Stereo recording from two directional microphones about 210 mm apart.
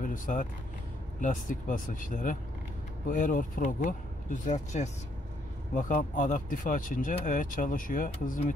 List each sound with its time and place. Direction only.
0.0 s speech: 40° left (ahead or behind)